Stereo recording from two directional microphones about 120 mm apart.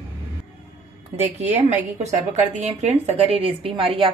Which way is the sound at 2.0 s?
70° right (ahead or behind).